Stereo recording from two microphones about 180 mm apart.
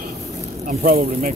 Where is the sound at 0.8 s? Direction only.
55° right (ahead or behind).